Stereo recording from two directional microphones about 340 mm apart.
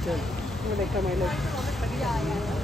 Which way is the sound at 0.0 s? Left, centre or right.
Centre.